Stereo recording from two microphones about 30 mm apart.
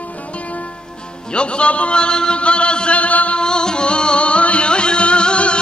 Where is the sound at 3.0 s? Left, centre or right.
Left.